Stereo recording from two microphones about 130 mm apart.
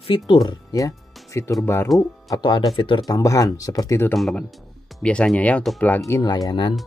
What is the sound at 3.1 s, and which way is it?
Speech, 25° left (ahead or behind).